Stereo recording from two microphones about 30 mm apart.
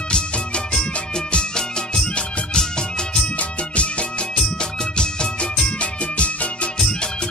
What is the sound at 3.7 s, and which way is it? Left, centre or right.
Music, left.